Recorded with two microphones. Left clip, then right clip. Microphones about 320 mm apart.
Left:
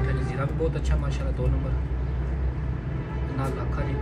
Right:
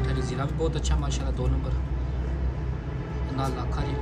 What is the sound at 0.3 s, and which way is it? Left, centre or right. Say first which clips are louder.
Speech: left 1 dB; centre.